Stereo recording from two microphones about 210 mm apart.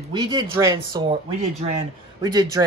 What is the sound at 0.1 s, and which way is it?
Speech, 20° right (ahead or behind).